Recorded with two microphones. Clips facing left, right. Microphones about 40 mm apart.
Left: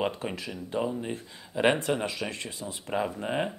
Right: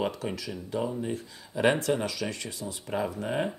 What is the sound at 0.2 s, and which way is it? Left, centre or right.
Speech, left.